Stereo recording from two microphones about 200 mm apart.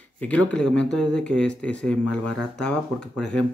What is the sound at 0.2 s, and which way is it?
Speech, 5° left (ahead or behind).